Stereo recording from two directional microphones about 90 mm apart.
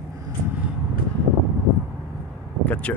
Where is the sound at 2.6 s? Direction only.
15° left (ahead or behind).